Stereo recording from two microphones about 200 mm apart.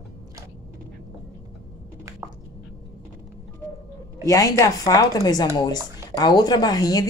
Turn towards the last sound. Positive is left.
turn(degrees=20)  # may be behind; listen again after turning